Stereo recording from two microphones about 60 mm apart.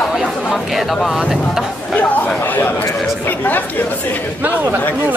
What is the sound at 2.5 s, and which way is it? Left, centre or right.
Speech, left.